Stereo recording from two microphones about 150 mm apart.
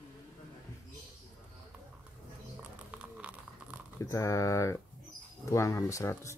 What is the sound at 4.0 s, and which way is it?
Speech, 20° left (ahead or behind).